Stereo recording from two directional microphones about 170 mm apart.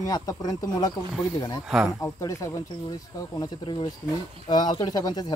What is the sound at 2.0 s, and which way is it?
Speech, 15° left (ahead or behind).